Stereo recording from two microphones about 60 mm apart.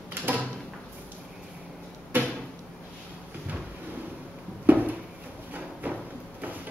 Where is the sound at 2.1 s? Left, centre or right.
Right.